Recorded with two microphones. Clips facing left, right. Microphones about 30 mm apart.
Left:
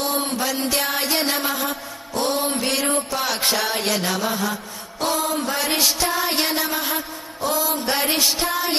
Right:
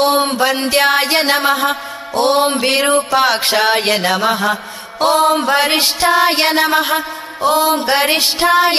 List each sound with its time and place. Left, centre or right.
0.0 s mantra: right